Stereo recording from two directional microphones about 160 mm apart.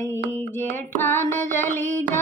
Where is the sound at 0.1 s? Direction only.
10° left (ahead or behind).